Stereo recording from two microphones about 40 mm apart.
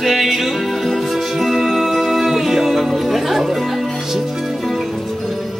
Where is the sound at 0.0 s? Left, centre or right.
Centre.